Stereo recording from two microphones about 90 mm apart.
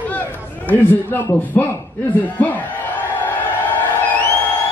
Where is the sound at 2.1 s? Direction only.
20° left (ahead or behind).